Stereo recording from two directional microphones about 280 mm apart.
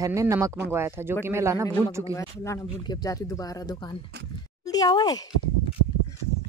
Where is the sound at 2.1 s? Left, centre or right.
Centre.